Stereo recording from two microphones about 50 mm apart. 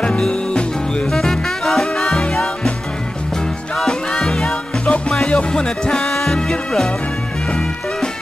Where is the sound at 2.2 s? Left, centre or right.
Centre.